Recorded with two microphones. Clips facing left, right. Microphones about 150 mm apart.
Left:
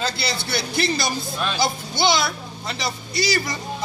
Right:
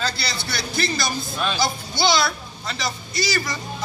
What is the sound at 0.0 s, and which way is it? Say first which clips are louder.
A man's voice: left 2 dB; 25° left (ahead or behind).